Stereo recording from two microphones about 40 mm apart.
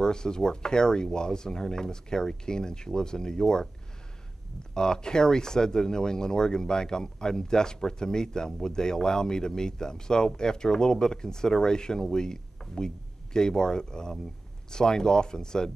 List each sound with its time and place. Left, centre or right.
0.0 s speech: centre
4.7 s speech: centre